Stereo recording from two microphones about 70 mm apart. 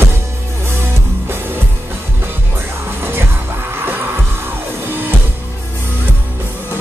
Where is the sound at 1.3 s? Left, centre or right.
Right.